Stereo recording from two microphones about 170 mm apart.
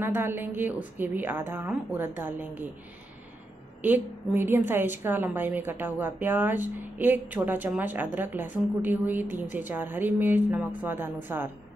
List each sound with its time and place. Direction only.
0.0 s a woman's voice: 15° right (ahead or behind)
3.8 s a woman's voice: 10° right (ahead or behind)